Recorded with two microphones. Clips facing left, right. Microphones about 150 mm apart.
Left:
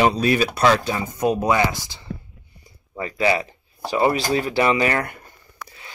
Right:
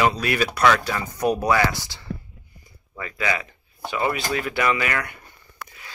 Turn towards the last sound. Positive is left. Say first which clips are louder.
# left 4 dB
turn(degrees=30)  # may be behind; listen again after turning